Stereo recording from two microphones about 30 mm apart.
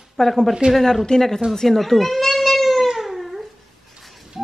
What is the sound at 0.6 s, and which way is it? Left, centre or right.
Speech, right.